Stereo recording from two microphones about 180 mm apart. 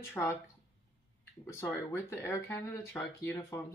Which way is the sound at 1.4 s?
15° left (ahead or behind).